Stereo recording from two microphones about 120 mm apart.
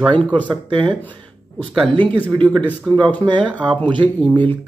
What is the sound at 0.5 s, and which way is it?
Speech, 40° right (ahead or behind).